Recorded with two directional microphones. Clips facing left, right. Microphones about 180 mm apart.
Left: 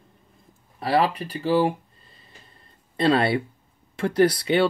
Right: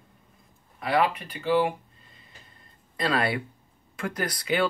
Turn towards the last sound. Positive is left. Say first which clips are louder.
# left 9 dB
turn(degrees=30)  # may be behind; listen again after turning